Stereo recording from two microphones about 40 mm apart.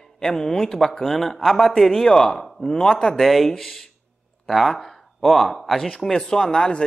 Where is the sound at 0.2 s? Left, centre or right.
Centre.